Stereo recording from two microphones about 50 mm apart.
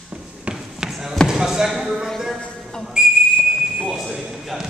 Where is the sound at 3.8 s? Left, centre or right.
Centre.